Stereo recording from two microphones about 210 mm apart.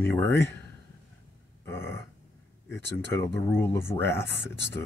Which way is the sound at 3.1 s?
10° left (ahead or behind).